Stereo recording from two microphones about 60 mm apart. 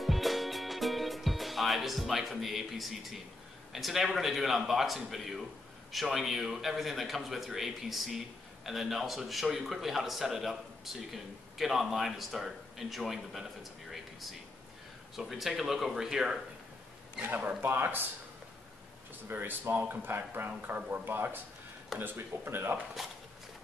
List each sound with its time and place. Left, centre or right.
0.0 s music: centre
3.7 s a man's voice: centre
15.1 s a man's voice: centre
17.6 s speech: right
19.2 s speech: right